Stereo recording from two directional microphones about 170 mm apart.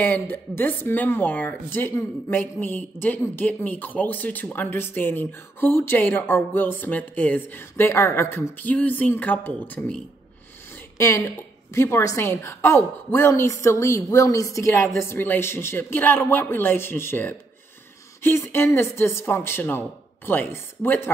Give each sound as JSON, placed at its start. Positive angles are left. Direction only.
{"t": 0.0, "sound": "a woman's voice", "side_deg": 10}
{"t": 11.0, "sound": "a woman's voice", "side_deg": 15}